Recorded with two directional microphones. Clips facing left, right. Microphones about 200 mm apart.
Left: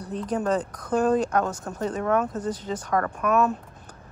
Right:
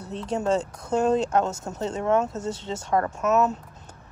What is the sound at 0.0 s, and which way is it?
Speech, 25° right (ahead or behind).